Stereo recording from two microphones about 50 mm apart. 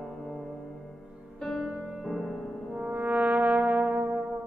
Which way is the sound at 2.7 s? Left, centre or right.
Right.